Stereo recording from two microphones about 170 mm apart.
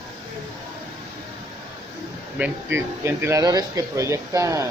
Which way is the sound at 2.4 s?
15° right (ahead or behind).